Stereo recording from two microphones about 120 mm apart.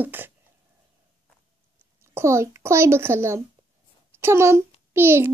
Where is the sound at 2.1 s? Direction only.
20° right (ahead or behind).